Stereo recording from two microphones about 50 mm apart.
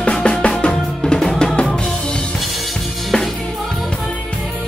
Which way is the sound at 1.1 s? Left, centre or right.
Centre.